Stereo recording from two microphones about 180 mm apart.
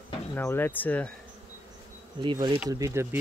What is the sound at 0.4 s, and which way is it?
Speech, 15° left (ahead or behind).